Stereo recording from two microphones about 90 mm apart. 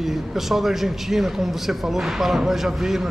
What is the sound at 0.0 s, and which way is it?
A man's voice, 5° right (ahead or behind).